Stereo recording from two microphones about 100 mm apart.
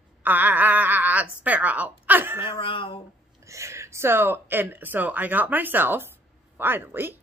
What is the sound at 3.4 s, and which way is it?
A woman's voice, 30° right (ahead or behind).